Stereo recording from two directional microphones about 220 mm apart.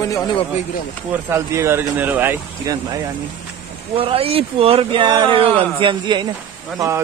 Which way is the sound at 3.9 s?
25° right (ahead or behind).